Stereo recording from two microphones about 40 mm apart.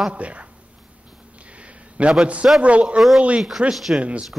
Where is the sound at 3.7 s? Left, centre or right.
Centre.